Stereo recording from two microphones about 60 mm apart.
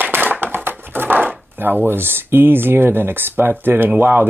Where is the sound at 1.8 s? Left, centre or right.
Right.